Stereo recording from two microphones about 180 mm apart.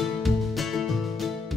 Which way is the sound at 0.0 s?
Centre (ahead or behind).